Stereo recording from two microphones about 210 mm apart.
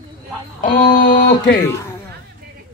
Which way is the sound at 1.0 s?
55° left (ahead or behind).